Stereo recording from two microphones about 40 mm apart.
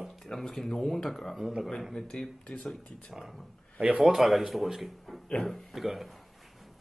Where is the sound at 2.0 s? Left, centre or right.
Centre.